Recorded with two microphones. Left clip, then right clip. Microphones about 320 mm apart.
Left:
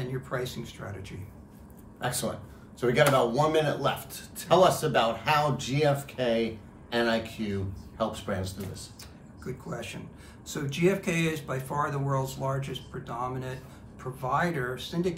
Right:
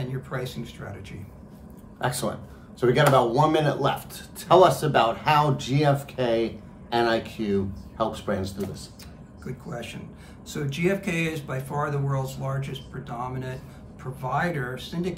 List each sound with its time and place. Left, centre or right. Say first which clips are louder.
0.0 s speech: even; centre
2.0 s speech: right 4 dB; centre
9.4 s speech: right 1 dB; centre